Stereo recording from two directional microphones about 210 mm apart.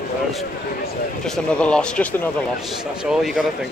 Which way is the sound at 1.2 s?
5° left (ahead or behind).